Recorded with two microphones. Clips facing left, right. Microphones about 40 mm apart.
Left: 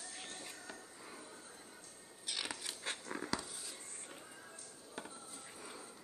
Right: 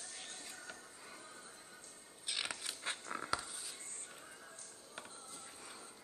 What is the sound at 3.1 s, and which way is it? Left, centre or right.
Writing, centre.